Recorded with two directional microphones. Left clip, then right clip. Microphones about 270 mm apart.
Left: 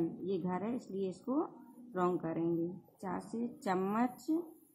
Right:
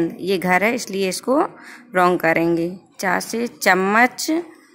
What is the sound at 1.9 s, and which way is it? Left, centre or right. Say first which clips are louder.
A woman's voice: right 19 dB; right.